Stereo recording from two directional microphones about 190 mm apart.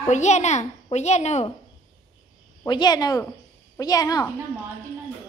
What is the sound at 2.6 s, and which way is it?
A woman's voice, 20° left (ahead or behind).